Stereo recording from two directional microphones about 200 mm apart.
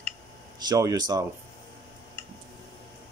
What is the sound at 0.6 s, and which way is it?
Speech, 20° right (ahead or behind).